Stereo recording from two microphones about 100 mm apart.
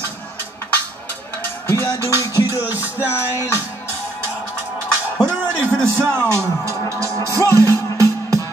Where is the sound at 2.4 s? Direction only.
20° right (ahead or behind).